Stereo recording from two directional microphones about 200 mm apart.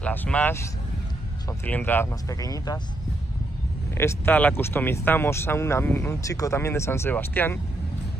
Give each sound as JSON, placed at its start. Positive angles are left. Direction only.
{"t": 0.0, "sound": "speech", "side_deg": 5}
{"t": 1.7, "sound": "speech", "side_deg": 10}
{"t": 3.9, "sound": "speech", "side_deg": 15}